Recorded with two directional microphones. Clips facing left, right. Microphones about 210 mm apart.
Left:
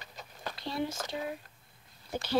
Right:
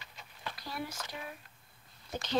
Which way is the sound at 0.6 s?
25° left (ahead or behind).